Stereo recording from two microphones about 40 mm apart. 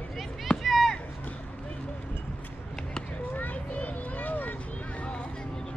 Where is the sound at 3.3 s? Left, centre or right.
Left.